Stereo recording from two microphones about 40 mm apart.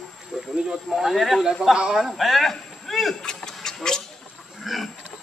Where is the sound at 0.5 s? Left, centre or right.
Centre.